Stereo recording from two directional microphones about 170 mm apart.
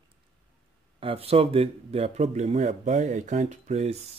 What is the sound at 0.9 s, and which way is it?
Speech, 35° right (ahead or behind).